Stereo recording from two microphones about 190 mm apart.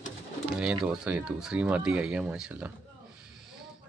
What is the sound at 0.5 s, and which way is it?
Speech, 5° right (ahead or behind).